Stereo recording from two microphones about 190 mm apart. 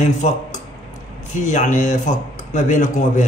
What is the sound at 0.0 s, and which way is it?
Speech, 40° left (ahead or behind).